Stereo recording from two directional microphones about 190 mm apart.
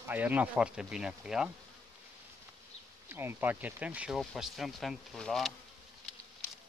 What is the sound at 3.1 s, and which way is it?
Speech, 10° right (ahead or behind).